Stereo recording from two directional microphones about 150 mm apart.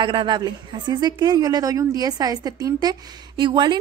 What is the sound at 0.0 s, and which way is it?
A woman's voice, 35° right (ahead or behind).